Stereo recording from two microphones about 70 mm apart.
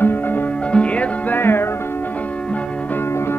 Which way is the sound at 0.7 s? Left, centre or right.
Centre.